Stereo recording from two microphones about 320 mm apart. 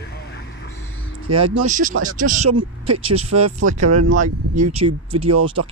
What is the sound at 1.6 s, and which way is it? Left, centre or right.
Speech, right.